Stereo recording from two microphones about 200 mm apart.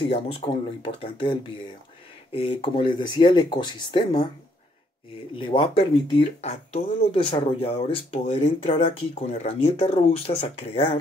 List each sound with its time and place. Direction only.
0.1 s speech: 25° left (ahead or behind)
5.3 s speech: 25° left (ahead or behind)